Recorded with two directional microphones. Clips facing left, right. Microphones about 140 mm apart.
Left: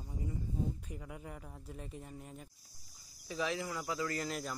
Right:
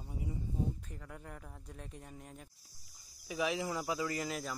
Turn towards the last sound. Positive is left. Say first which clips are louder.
# even
turn(degrees=0)  # may be behind; listen again after turning